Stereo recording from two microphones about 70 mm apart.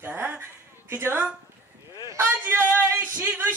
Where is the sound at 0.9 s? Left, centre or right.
Right.